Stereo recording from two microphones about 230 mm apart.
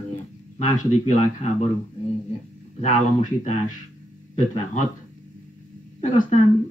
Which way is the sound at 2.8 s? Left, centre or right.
Left.